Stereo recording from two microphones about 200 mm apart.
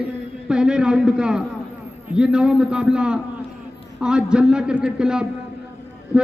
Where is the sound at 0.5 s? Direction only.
5° right (ahead or behind).